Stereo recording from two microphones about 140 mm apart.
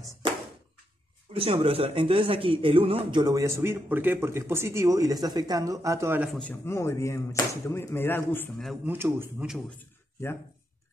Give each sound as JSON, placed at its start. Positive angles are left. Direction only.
{"t": 1.3, "sound": "a man's voice", "side_deg": -40}
{"t": 6.3, "sound": "speech", "side_deg": 10}
{"t": 8.8, "sound": "speech", "side_deg": -15}